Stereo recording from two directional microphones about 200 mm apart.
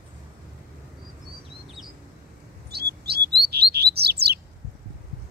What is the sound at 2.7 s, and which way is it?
Chirp, 55° right (ahead or behind).